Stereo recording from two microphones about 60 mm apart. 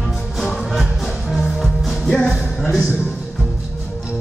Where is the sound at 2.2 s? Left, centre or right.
Centre.